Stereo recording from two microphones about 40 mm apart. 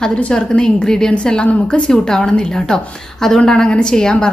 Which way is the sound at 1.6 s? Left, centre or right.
Left.